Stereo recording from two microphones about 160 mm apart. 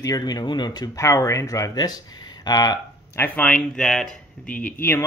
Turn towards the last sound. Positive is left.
turn(degrees=15)  # may be behind; listen again after turning